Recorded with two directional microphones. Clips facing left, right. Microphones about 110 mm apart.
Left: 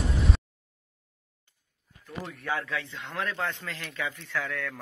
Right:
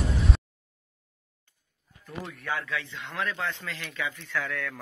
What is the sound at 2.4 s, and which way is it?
A man's voice, 30° left (ahead or behind).